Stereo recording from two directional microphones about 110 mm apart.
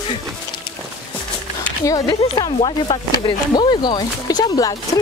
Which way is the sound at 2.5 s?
55° left (ahead or behind).